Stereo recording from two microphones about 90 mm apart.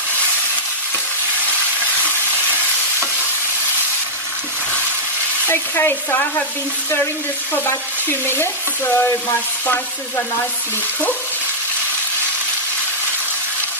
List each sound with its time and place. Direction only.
2.0 s stir: 20° right (ahead or behind)
5.5 s stir: 25° left (ahead or behind)
7.6 s stir: 25° left (ahead or behind)